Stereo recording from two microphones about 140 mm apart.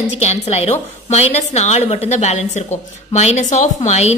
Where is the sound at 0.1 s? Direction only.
50° left (ahead or behind).